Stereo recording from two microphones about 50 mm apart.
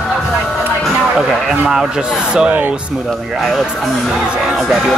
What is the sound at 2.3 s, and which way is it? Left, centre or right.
Speech, right.